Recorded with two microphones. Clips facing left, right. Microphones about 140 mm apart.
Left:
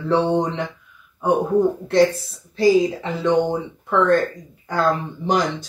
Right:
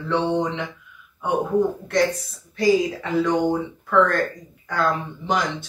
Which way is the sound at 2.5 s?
25° left (ahead or behind).